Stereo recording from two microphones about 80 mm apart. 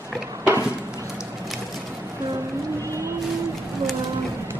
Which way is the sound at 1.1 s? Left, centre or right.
Centre.